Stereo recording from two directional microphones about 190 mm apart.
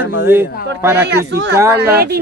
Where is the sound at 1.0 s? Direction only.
60° right (ahead or behind).